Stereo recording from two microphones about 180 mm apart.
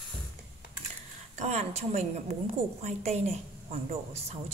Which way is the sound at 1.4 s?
40° right (ahead or behind).